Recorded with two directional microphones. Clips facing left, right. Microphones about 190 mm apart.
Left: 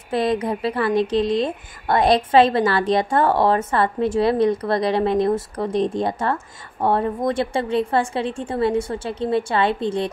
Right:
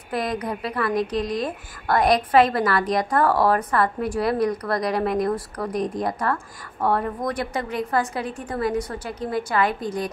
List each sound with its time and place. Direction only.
0.1 s a woman's voice: 25° left (ahead or behind)